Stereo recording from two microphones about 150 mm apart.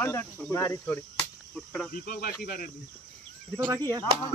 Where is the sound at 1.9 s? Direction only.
80° left.